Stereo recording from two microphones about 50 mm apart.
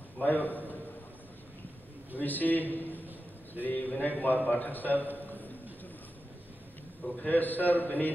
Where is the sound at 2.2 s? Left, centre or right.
Left.